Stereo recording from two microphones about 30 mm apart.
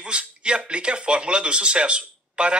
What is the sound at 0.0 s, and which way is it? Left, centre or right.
Speech, right.